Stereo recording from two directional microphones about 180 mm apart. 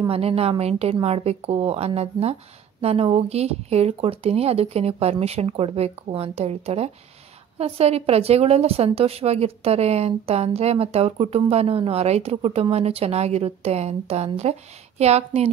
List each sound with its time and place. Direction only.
0.1 s a woman's voice: 35° right (ahead or behind)